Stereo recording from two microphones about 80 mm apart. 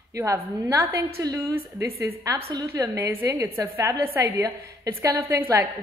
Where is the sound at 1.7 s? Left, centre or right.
Right.